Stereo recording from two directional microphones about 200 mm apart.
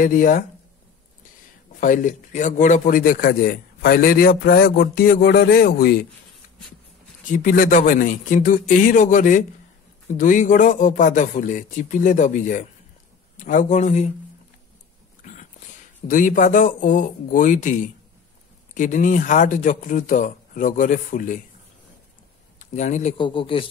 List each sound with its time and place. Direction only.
0.0 s a man's voice: 40° left (ahead or behind)
1.8 s a man's voice: 40° left (ahead or behind)
7.3 s speech: 45° left (ahead or behind)
16.1 s speech: 40° left (ahead or behind)
22.6 s speech: 35° left (ahead or behind)
23.1 s a man's voice: 25° left (ahead or behind)